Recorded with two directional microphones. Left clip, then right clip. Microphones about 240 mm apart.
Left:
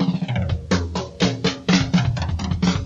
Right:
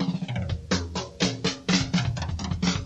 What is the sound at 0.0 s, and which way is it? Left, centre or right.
Music, left.